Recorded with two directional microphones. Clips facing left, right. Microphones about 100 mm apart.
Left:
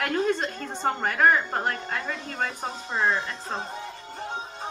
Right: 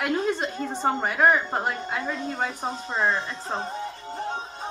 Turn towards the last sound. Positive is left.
turn(degrees=-5)  # may be behind; listen again after turning